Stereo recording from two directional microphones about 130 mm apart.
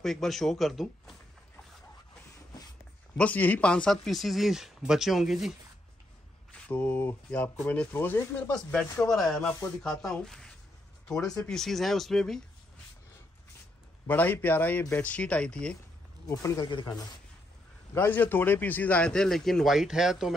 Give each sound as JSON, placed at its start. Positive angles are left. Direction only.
{"t": 0.0, "sound": "a man's voice", "side_deg": 0}
{"t": 3.2, "sound": "a man's voice", "side_deg": 10}
{"t": 6.5, "sound": "speech", "side_deg": 10}
{"t": 9.0, "sound": "a man's voice", "side_deg": 5}
{"t": 14.0, "sound": "speech", "side_deg": 15}
{"t": 16.3, "sound": "speech", "side_deg": 25}
{"t": 17.9, "sound": "a man's voice", "side_deg": 15}